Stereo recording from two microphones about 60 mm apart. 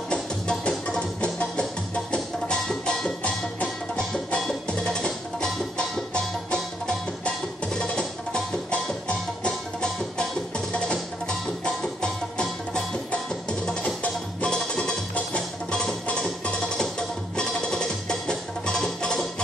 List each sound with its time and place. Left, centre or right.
0.1 s music: centre
3.5 s music: centre